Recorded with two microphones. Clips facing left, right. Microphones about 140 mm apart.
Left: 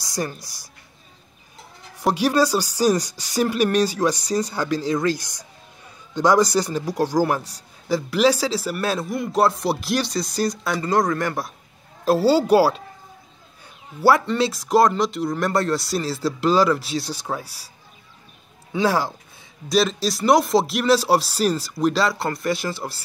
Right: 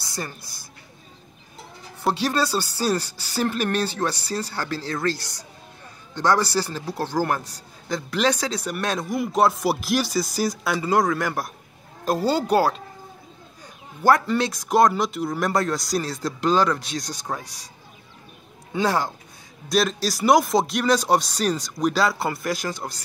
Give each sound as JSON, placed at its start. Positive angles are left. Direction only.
{"t": 0.0, "sound": "a woman's voice", "side_deg": 15}
{"t": 2.0, "sound": "speech", "side_deg": 10}
{"t": 14.2, "sound": "speech", "side_deg": 0}
{"t": 18.7, "sound": "speech", "side_deg": 5}